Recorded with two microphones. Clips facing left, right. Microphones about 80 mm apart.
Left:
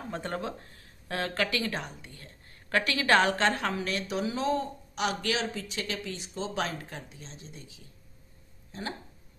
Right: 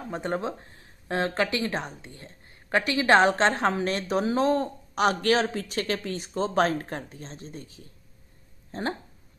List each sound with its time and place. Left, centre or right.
0.1 s speech: right